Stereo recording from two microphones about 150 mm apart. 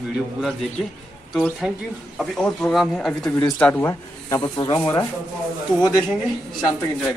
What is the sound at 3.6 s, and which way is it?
Speech, 15° left (ahead or behind).